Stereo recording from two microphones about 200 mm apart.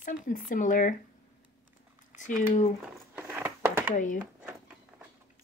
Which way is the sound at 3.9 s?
40° left (ahead or behind).